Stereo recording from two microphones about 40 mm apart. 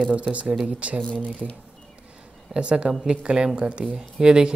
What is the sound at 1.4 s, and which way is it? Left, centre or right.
Speech, centre.